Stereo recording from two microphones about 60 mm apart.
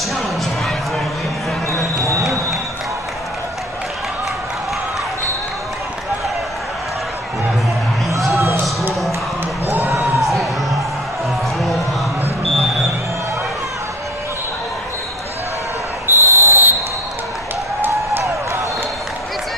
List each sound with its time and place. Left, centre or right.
2.0 s run: right
9.7 s a sound: right
10.2 s music: centre
16.1 s basketball bounce: right